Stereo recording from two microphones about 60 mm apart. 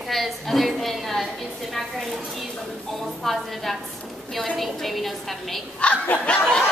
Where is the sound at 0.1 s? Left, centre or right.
Centre.